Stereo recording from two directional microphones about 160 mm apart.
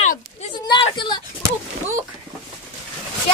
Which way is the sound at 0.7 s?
30° left (ahead or behind).